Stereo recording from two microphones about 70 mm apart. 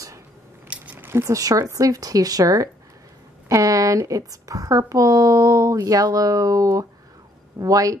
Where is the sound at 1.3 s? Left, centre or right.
Right.